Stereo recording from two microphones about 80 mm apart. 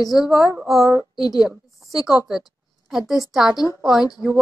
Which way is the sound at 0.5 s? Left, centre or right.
Right.